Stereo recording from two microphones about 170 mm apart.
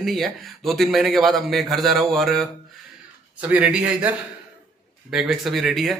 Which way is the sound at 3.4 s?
10° right (ahead or behind).